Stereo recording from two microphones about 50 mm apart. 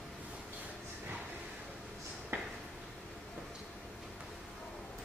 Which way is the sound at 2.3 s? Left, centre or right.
Right.